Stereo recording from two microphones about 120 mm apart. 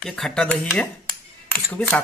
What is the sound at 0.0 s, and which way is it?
Speech, 5° left (ahead or behind).